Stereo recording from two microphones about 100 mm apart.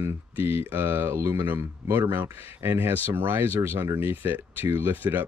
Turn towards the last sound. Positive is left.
turn(degrees=-20)  # may be behind; listen again after turning